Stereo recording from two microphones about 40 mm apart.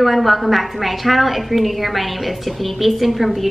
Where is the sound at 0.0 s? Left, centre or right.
Centre.